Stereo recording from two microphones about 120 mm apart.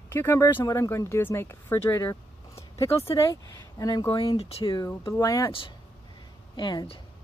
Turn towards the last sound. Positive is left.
turn(degrees=30)  # may be behind; listen again after turning